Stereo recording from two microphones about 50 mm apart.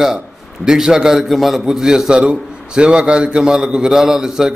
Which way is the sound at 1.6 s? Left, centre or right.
Centre.